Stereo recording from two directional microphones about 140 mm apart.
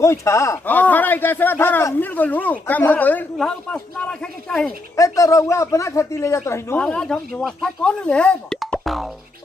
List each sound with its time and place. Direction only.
0.0 s speech: 20° left (ahead or behind); by 4.7 s 5° left (ahead or behind)
4.9 s speech: 25° left (ahead or behind)
6.8 s speech: 5° left (ahead or behind)